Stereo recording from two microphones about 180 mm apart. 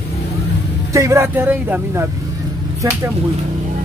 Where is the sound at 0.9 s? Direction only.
15° right (ahead or behind).